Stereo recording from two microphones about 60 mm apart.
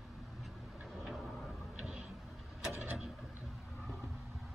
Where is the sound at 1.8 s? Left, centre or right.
Centre.